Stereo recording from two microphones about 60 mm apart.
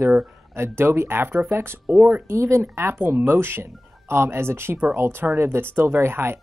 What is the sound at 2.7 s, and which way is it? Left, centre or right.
Speech, right.